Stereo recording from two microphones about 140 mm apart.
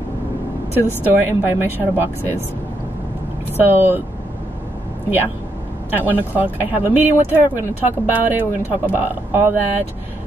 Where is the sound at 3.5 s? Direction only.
15° right (ahead or behind).